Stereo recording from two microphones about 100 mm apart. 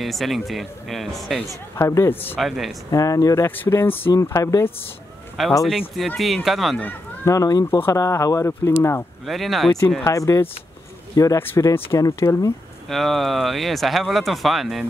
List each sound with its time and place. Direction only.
0.0 s speech: centre (ahead or behind)
1.5 s speech: 30° left (ahead or behind)
2.3 s speech: 5° right (ahead or behind)
2.9 s speech: 35° left (ahead or behind)
3.4 s speech: 20° left (ahead or behind)
4.1 s speech: 35° left (ahead or behind)
5.6 s speech: centre (ahead or behind)
7.2 s speech: 35° left (ahead or behind)
9.2 s speech: centre (ahead or behind)
10.0 s speech: 30° left (ahead or behind)
12.8 s speech: centre (ahead or behind)